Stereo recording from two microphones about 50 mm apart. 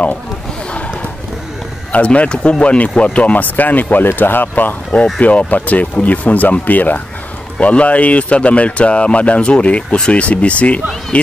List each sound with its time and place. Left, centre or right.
1.9 s speech: left
5.2 s speech: left